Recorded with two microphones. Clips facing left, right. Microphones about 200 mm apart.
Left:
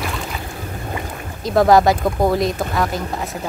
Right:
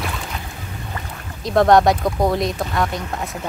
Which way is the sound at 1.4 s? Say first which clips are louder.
Left 1 dB; centre (ahead or behind).